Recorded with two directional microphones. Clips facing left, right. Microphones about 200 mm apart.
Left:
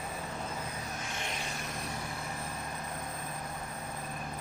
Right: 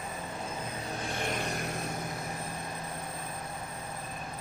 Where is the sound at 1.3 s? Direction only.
55° right (ahead or behind).